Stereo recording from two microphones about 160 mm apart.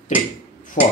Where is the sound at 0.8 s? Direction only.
50° left (ahead or behind).